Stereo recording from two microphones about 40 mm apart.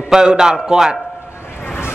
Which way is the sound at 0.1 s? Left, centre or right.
Centre.